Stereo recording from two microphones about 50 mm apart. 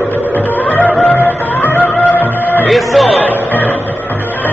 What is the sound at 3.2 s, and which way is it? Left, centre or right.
Music, left.